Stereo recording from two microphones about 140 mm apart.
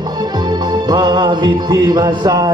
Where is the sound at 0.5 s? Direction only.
30° right (ahead or behind).